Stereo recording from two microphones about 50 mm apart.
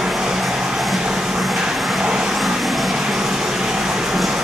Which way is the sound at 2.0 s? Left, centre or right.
Centre.